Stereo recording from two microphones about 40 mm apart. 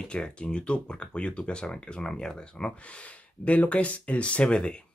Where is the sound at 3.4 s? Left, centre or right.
Left.